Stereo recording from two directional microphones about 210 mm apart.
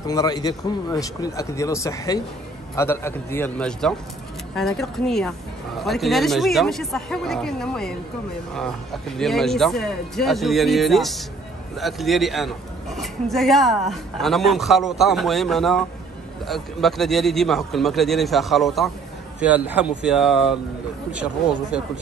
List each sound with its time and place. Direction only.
0.0 s a man's voice: 15° left (ahead or behind); by 20.5 s centre (ahead or behind)
21.7 s a man's voice: 5° right (ahead or behind)